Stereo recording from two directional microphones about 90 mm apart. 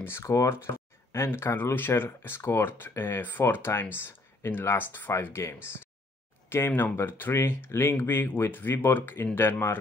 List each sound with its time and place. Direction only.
0.0 s speech: 35° left (ahead or behind)